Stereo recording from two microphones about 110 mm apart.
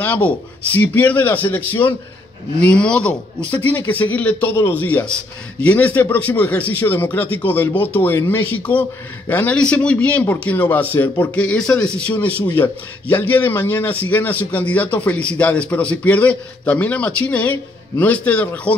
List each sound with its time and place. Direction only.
0.0 s a man's voice: 15° left (ahead or behind)